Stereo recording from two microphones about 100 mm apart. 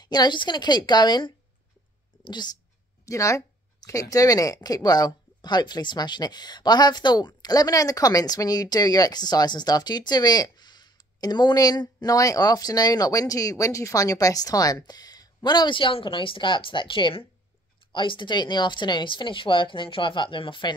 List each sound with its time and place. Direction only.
0.0 s a woman's voice: 45° left (ahead or behind)
3.1 s a woman's voice: 30° left (ahead or behind); by 20.7 s 55° left (ahead or behind)